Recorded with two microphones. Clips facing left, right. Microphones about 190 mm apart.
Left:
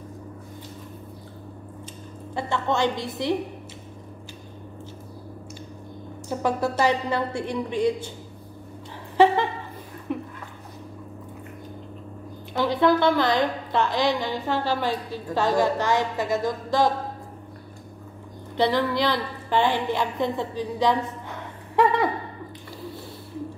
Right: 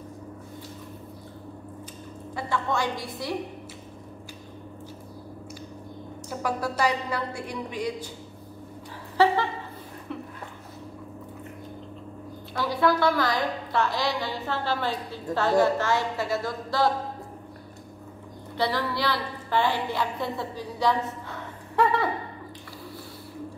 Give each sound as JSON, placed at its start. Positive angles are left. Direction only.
{"t": 2.3, "sound": "a woman's voice", "side_deg": 25}
{"t": 6.4, "sound": "a woman's voice", "side_deg": 25}
{"t": 9.1, "sound": "a sound", "side_deg": 20}
{"t": 12.5, "sound": "a woman's voice", "side_deg": 20}
{"t": 18.6, "sound": "a woman's voice", "side_deg": 20}